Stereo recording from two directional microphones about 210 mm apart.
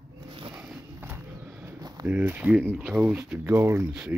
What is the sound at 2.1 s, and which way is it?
Speech, 10° right (ahead or behind).